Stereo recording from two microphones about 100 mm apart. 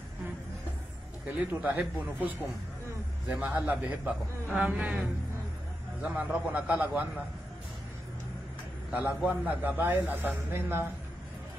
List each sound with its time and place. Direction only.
1.2 s speech: 15° right (ahead or behind)
6.0 s speech: 15° right (ahead or behind)
8.9 s speech: 15° right (ahead or behind)